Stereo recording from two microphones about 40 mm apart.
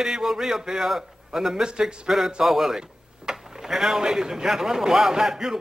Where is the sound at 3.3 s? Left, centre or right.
Centre.